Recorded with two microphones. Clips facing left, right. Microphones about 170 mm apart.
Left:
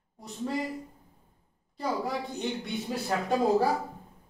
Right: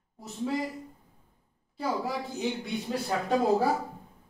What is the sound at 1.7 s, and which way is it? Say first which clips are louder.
Speech: even; 5° right (ahead or behind).